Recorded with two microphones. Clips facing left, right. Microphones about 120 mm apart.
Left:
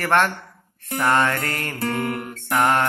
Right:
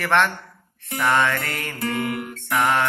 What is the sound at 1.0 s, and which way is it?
Music, 40° left (ahead or behind).